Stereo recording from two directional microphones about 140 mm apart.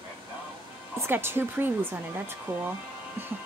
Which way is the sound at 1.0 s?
15° right (ahead or behind).